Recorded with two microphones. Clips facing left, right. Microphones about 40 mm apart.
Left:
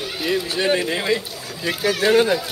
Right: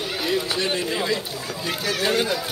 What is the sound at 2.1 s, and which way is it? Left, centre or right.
Speech, left.